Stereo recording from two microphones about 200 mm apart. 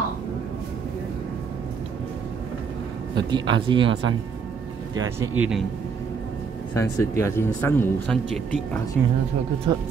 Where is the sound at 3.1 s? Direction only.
25° right (ahead or behind).